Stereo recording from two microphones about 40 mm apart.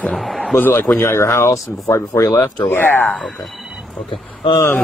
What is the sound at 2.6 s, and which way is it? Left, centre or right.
Speech, left.